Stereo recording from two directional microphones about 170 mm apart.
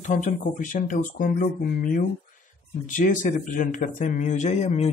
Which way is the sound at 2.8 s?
50° left (ahead or behind).